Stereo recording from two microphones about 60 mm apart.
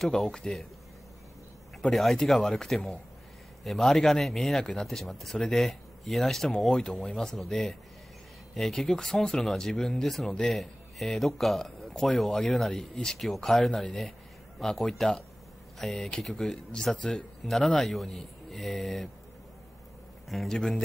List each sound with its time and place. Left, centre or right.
0.0 s speech: centre
1.8 s speech: centre
20.2 s speech: centre